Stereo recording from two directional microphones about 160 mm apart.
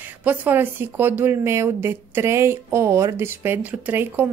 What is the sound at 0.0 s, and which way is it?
A woman's voice, 10° right (ahead or behind).